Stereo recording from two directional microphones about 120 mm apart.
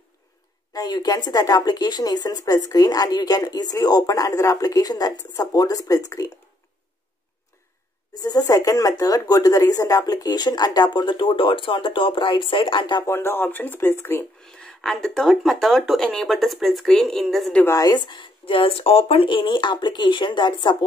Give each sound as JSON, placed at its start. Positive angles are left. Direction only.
{"t": 0.7, "sound": "speech", "side_deg": 35}
{"t": 8.1, "sound": "speech", "side_deg": 30}
{"t": 13.0, "sound": "speech", "side_deg": 20}
{"t": 14.4, "sound": "speech", "side_deg": 5}
{"t": 17.6, "sound": "speech", "side_deg": 25}
{"t": 17.9, "sound": "speech", "side_deg": 40}